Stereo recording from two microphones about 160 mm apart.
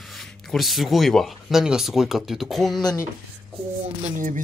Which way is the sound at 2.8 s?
25° left (ahead or behind).